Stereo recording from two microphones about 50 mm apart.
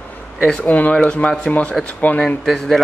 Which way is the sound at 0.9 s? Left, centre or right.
Left.